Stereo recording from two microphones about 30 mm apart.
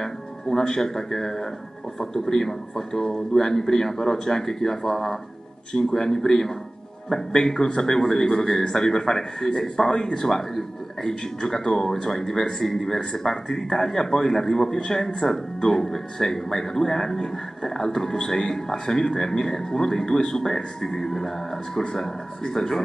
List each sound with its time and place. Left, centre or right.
0.0 s a man's voice: centre
5.7 s a man's voice: left